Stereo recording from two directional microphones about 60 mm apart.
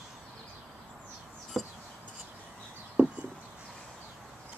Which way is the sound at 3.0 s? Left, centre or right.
Right.